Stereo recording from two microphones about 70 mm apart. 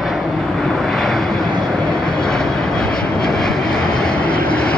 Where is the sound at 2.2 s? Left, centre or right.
Centre.